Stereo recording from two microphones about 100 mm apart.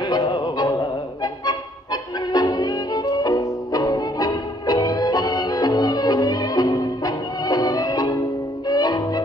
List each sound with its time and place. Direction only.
0.0 s music: 45° left (ahead or behind)